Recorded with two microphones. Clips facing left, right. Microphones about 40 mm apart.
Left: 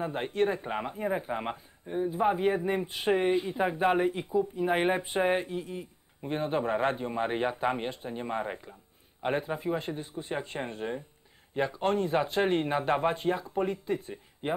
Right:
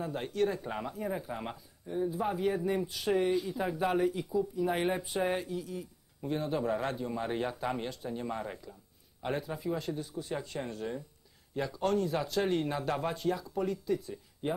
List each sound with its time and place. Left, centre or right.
0.0 s speech: left